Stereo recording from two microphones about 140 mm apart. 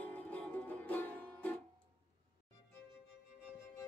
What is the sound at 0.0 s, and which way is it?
Music, 10° left (ahead or behind).